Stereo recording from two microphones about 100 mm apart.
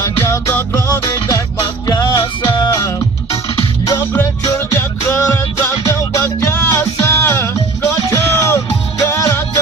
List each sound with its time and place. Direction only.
0.0 s music: 30° left (ahead or behind)